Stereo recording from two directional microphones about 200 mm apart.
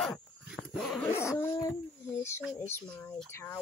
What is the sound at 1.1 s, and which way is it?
Speech, 10° left (ahead or behind).